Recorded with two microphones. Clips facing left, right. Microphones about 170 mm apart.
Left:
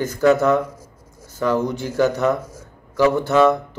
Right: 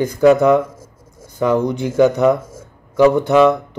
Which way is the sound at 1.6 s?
60° right (ahead or behind).